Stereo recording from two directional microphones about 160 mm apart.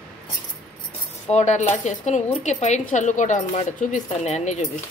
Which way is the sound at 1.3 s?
45° left (ahead or behind).